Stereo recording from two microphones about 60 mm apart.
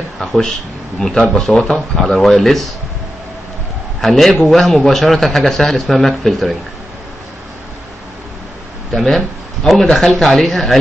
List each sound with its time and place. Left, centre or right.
0.2 s a man's voice: centre
4.0 s a man's voice: centre
8.9 s a man's voice: centre